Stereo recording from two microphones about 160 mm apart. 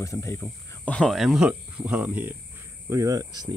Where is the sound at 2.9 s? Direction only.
20° right (ahead or behind).